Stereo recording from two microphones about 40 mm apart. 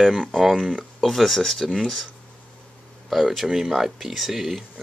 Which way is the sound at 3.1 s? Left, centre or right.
Centre.